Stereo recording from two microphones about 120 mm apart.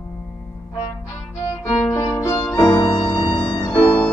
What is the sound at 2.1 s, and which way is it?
Music, 25° left (ahead or behind).